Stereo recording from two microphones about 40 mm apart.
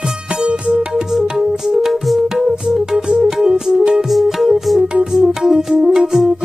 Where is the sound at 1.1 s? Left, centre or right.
Centre.